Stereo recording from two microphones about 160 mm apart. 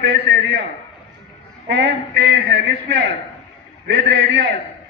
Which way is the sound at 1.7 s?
85° right.